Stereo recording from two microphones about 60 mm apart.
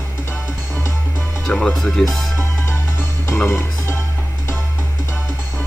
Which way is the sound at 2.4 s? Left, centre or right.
Left.